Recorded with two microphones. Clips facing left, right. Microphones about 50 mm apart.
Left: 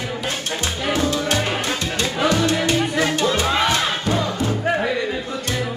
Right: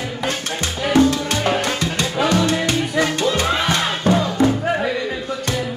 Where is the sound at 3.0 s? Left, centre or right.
Right.